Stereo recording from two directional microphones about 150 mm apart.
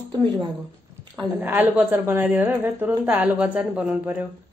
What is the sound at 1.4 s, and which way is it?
A woman's voice, 10° right (ahead or behind).